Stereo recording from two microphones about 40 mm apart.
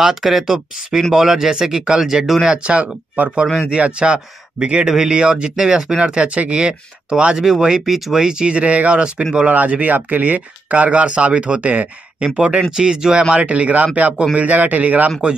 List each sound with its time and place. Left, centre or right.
0.0 s speech: centre
2.4 s speech: right
3.2 s speech: right
3.7 s speech: right
4.8 s speech: centre
5.1 s speech: right
5.6 s speech: centre
5.9 s speech: right
6.5 s speech: right
8.5 s speech: right
9.0 s speech: right
9.5 s speech: right
12.7 s speech: centre
13.3 s speech: right